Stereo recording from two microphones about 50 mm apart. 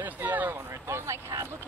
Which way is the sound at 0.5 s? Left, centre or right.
Right.